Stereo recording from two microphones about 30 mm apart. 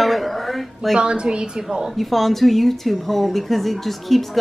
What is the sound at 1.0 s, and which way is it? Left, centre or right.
Speech, right.